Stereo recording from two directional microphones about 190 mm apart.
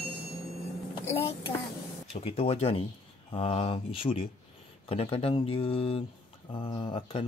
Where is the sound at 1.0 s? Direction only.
15° left (ahead or behind).